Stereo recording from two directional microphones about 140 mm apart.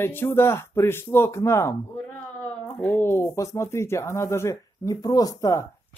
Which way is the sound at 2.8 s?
15° left (ahead or behind).